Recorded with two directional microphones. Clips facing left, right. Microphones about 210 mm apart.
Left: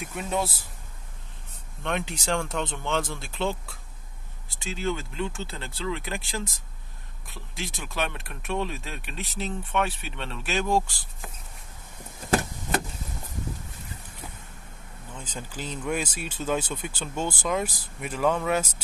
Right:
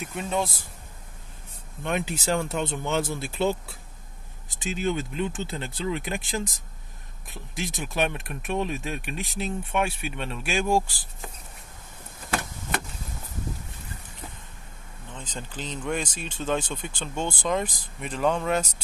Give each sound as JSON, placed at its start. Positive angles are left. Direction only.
{"t": 0.0, "sound": "speech", "side_deg": 5}
{"t": 1.8, "sound": "speech", "side_deg": -5}
{"t": 4.5, "sound": "speech", "side_deg": -15}
{"t": 15.1, "sound": "speech", "side_deg": 10}